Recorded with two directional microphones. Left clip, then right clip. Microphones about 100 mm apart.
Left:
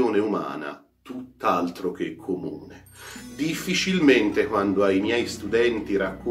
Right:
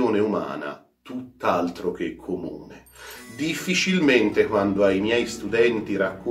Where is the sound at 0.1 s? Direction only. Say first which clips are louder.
Right 1 dB; 30° left (ahead or behind).